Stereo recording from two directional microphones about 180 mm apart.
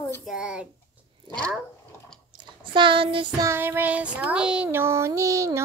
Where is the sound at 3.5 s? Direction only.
10° right (ahead or behind).